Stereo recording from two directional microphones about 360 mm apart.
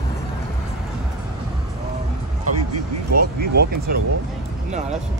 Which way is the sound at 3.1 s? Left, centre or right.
Right.